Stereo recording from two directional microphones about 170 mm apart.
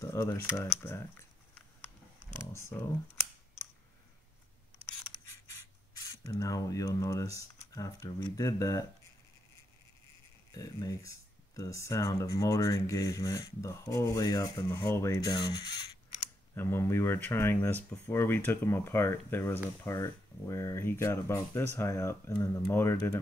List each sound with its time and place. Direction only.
0.0 s speech: 15° left (ahead or behind)
2.3 s computer keyboard: 15° left (ahead or behind)
5.5 s mechanisms: 20° left (ahead or behind)
7.3 s speech: 20° left (ahead or behind)
10.5 s speech: 20° left (ahead or behind)